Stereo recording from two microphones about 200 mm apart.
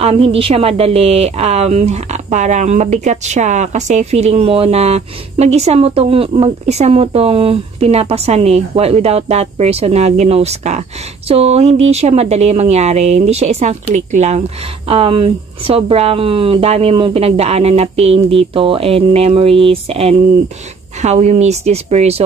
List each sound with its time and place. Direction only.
0.0 s a woman's voice: 30° right (ahead or behind)